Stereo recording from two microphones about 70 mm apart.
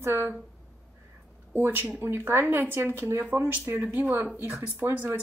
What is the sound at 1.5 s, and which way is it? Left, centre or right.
Speech, right.